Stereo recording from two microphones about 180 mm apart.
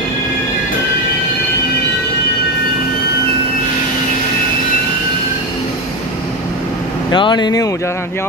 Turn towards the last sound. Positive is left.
turn(degrees=20)  # may be behind; listen again after turning